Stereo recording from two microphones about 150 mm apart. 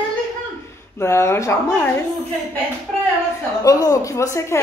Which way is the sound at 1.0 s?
15° left (ahead or behind).